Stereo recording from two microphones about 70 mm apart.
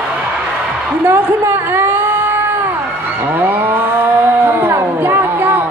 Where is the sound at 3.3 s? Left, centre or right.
Right.